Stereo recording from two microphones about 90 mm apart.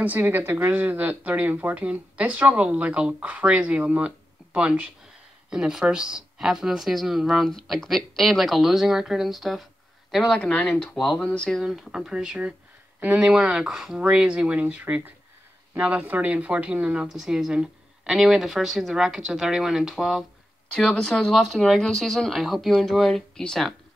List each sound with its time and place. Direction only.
0.0 s a woman's voice: 20° right (ahead or behind); by 11.6 s 10° left (ahead or behind)
11.6 s a woman's voice: 5° right (ahead or behind)
20.7 s a woman's voice: 10° left (ahead or behind)